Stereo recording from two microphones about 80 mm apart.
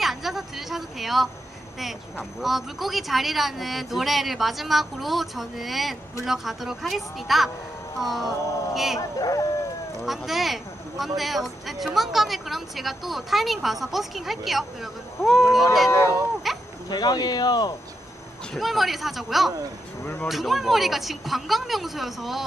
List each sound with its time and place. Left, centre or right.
0.0 s a sound: centre
2.4 s speech: centre
9.2 s speech: left
10.0 s speech: centre
16.5 s a sound: centre
16.9 s speech: left
18.6 s speech: centre